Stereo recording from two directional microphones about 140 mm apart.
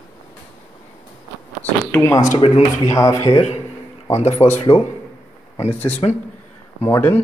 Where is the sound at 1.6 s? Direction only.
20° left (ahead or behind).